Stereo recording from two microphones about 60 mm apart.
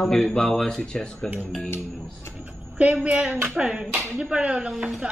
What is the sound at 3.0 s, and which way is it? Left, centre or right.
Speech, centre.